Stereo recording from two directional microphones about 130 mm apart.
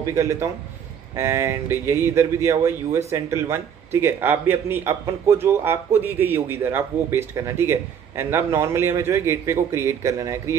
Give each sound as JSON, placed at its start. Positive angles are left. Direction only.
{"t": 0.0, "sound": "a man's voice", "side_deg": -25}